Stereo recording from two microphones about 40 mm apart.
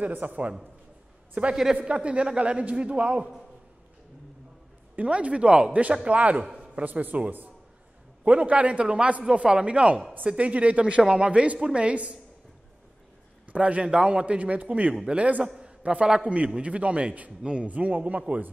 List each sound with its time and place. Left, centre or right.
0.1 s speech: right
1.4 s a man's voice: right
4.9 s a man's voice: right
6.4 s a sound: centre
6.7 s a man's voice: right
13.5 s a man's voice: right
15.4 s a man's voice: centre
15.8 s a man's voice: right
17.4 s a man's voice: right
17.6 s a man's voice: right